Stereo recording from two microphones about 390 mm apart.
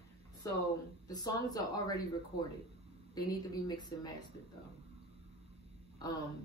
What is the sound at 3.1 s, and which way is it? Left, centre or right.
Speech, centre.